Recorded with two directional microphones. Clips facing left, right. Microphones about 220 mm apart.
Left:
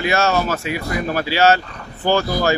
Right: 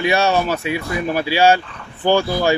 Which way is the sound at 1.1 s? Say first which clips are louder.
Right 1 dB; 15° right (ahead or behind).